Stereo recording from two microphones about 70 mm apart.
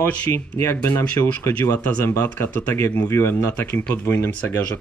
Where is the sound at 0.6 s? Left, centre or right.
Left.